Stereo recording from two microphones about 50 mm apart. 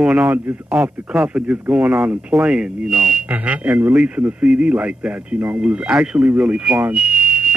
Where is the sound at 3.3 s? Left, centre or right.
Right.